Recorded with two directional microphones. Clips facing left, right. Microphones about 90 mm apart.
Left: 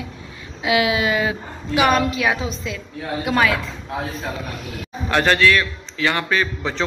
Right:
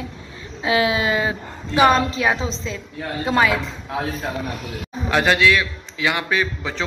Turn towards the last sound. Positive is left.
turn(degrees=-10)  # may be behind; listen again after turning